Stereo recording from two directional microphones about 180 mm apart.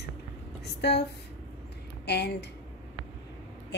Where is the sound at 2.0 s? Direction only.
65° left (ahead or behind).